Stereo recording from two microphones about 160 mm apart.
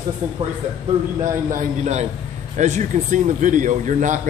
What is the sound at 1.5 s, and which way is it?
A man's voice, 45° right (ahead or behind).